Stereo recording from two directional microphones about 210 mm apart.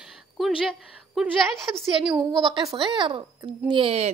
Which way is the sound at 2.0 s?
20° right (ahead or behind).